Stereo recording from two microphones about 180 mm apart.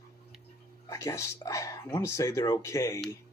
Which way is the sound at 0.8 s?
15° left (ahead or behind).